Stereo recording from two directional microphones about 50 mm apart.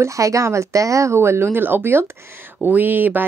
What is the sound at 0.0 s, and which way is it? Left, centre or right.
Speech, right.